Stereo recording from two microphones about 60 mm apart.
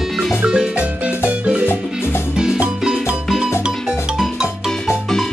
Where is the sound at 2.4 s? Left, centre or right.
Centre.